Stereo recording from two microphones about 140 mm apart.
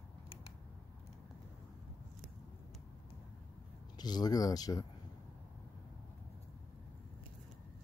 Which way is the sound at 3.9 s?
30° left (ahead or behind).